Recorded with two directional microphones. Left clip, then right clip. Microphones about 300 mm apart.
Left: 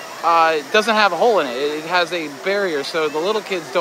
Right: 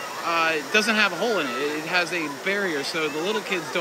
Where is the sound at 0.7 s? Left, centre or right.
Left.